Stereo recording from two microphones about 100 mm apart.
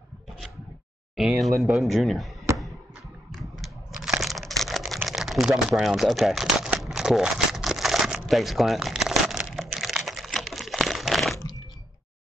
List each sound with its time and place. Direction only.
1.1 s speech: 5° right (ahead or behind)
3.3 s computer keyboard: centre (ahead or behind)
10.0 s typing: centre (ahead or behind)